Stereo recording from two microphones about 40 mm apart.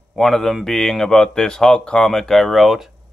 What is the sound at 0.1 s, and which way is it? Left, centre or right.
Speech, centre.